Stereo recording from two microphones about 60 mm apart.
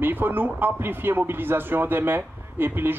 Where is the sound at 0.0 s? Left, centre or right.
Right.